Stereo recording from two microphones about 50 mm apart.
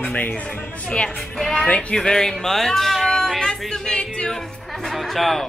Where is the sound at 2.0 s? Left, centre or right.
Centre.